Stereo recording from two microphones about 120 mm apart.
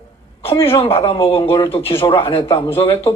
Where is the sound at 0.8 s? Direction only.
50° left (ahead or behind).